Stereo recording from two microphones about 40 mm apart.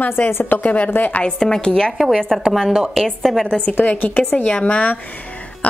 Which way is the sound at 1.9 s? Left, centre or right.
Centre.